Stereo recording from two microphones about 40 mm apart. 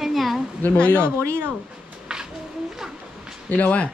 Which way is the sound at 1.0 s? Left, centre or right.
Right.